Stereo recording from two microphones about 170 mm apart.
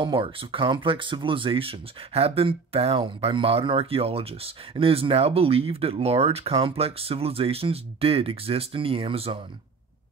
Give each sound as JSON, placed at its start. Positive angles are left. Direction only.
{"t": 0.0, "sound": "speech", "side_deg": -30}